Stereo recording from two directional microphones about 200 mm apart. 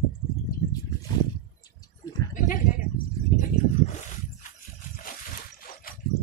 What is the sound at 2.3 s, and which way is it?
Goat, 40° left (ahead or behind).